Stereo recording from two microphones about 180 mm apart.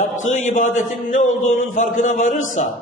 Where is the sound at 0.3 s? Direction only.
45° left (ahead or behind).